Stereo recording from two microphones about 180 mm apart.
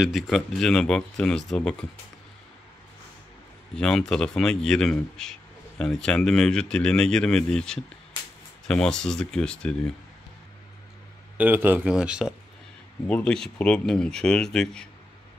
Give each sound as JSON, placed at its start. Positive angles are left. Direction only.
{"t": 0.0, "sound": "speech", "side_deg": 0}
{"t": 3.7, "sound": "speech", "side_deg": 5}
{"t": 11.3, "sound": "speech", "side_deg": -10}
{"t": 13.0, "sound": "speech", "side_deg": 5}